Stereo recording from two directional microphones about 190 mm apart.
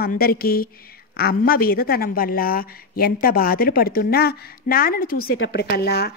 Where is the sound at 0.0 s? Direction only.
50° left (ahead or behind).